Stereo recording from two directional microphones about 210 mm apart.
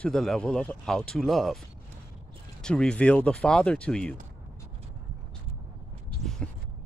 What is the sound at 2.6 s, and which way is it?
Speech, 5° left (ahead or behind).